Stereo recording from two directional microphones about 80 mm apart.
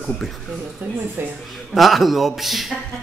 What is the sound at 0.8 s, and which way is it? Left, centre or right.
Speech, right.